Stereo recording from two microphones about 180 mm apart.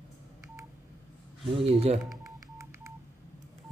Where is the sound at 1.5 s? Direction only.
30° right (ahead or behind).